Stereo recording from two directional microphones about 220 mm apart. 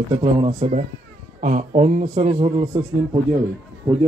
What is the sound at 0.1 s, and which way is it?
A man's voice, 20° right (ahead or behind).